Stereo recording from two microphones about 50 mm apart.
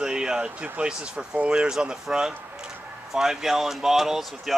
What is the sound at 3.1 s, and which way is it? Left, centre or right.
Speech, centre.